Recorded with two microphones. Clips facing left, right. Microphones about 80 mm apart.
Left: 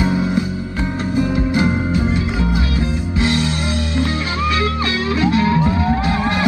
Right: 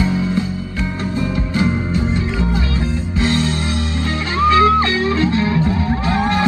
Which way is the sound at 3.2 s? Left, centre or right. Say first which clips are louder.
Right 1 dB; left.